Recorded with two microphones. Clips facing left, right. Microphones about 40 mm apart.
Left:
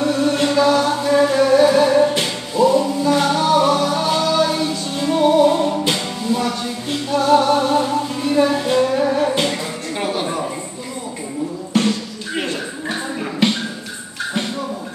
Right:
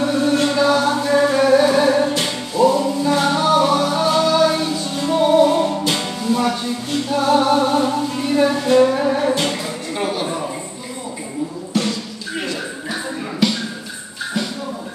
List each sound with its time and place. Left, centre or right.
0.0 s chant: centre
1.4 s music: centre
2.0 s music: centre
2.6 s music: centre
6.2 s a sound: centre
7.1 s music: centre
10.1 s a sound: centre
11.7 s a sound: left
13.4 s music: left